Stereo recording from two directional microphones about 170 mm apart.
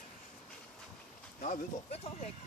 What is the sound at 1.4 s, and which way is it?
Speech, 40° left (ahead or behind).